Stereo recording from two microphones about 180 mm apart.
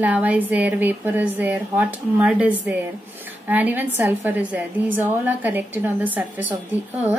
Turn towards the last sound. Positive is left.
turn(degrees=-10)  # may be behind; listen again after turning